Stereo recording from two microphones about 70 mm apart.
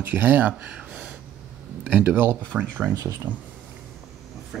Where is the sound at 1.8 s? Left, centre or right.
Right.